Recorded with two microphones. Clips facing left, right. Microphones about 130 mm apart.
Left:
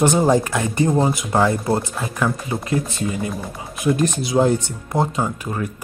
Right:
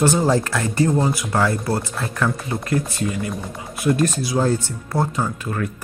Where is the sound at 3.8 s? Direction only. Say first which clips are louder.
Even; 20° left (ahead or behind).